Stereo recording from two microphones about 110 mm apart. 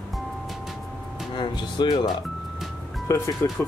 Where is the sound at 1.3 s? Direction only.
45° left (ahead or behind).